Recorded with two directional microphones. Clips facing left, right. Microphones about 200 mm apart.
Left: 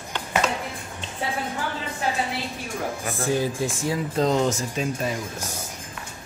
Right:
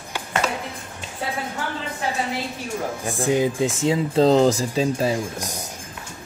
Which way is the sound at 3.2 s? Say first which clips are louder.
Right 4 dB; 20° right (ahead or behind).